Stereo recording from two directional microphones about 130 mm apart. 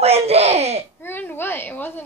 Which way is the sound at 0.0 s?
50° right (ahead or behind).